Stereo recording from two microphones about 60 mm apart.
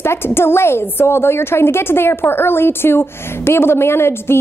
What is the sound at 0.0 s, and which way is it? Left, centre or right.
A woman's voice, left.